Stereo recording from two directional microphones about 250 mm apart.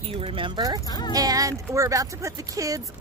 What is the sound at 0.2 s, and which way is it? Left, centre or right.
Speech, right.